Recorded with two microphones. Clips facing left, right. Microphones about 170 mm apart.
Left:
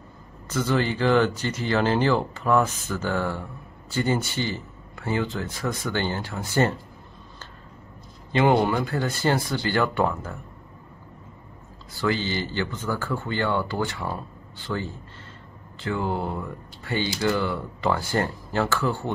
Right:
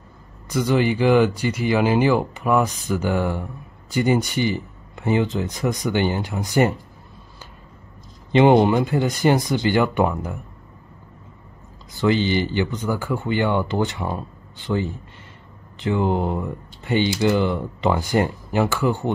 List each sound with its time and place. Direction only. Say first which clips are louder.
0.5 s speech: right 4 dB; 15° right (ahead or behind)
8.3 s speech: right 6 dB; 20° right (ahead or behind)
11.9 s speech: right 6 dB; 20° right (ahead or behind)